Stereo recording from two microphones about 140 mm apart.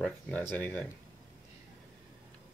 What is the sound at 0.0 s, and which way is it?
Speech, 10° left (ahead or behind).